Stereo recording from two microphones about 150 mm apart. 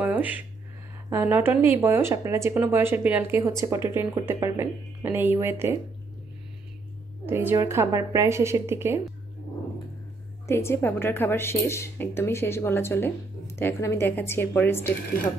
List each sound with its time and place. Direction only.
0.0 s a sound: 10° right (ahead or behind)
1.1 s speech: 15° right (ahead or behind)
7.2 s speech: 15° right (ahead or behind)
10.4 s a woman's voice: 15° left (ahead or behind)